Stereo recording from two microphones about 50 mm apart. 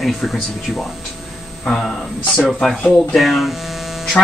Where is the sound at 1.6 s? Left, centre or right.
Centre.